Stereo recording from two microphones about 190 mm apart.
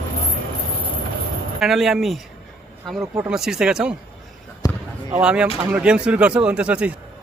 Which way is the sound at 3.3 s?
5° right (ahead or behind).